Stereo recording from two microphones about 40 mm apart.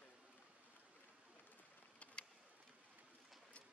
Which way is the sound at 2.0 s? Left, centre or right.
Left.